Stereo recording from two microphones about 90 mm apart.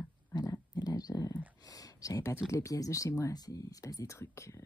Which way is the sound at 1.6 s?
40° left (ahead or behind).